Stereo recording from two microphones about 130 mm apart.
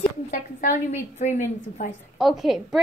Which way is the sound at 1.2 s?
60° left (ahead or behind).